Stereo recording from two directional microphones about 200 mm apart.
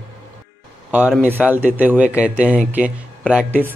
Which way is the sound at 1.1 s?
10° right (ahead or behind).